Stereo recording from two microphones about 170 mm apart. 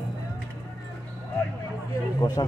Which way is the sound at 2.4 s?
25° left (ahead or behind).